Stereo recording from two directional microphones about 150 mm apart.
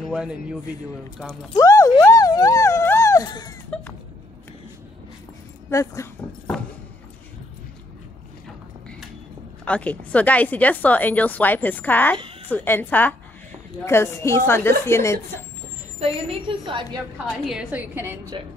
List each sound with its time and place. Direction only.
0.1 s speech: 5° right (ahead or behind)
1.5 s speech: 20° left (ahead or behind)
5.7 s speech: 20° left (ahead or behind)
9.7 s speech: 10° left (ahead or behind)
16.0 s a woman's voice: 35° right (ahead or behind)
17.5 s speech: 10° right (ahead or behind)
18.3 s a woman's voice: 35° right (ahead or behind)